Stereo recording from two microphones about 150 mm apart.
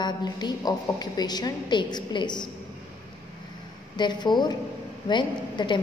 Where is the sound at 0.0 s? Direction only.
30° left (ahead or behind).